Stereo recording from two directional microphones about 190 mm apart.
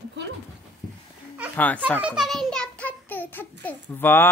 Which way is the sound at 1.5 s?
10° left (ahead or behind).